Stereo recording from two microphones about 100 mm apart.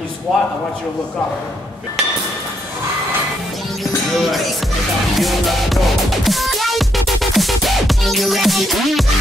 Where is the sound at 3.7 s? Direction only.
Centre (ahead or behind).